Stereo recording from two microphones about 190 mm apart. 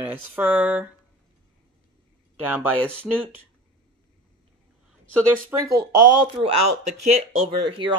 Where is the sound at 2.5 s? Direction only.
10° right (ahead or behind).